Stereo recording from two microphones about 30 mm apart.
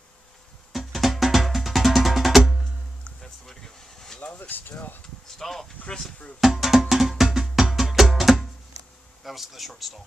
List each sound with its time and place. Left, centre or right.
0.7 s music: centre
3.6 s a sound: centre
4.3 s speech: left
5.4 s speech: centre
5.9 s speech: left
6.4 s music: centre
9.2 s speech: centre